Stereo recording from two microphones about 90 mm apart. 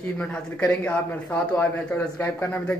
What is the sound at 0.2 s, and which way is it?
Speech, 15° left (ahead or behind).